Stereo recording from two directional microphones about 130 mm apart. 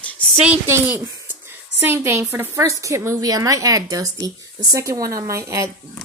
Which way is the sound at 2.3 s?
20° right (ahead or behind).